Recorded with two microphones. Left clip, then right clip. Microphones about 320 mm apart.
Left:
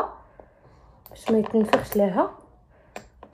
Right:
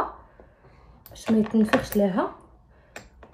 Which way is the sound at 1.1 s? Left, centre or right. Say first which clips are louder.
Left 2 dB; left.